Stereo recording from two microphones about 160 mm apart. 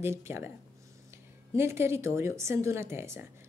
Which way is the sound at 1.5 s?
15° right (ahead or behind).